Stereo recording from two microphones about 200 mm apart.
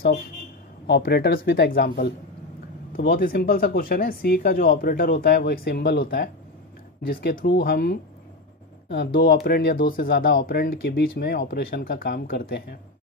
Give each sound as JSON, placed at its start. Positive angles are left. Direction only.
{"t": 0.8, "sound": "speech", "side_deg": 55}